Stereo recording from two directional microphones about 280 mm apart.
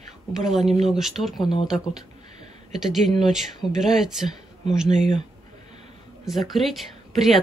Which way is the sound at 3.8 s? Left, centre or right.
Centre.